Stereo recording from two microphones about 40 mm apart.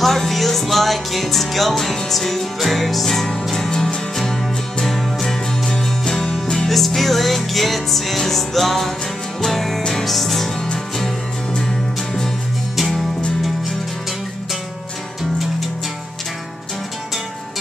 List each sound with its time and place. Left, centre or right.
0.0 s music: centre
3.7 s music: left; by 10.5 s centre
10.6 s music: centre
12.7 s music: centre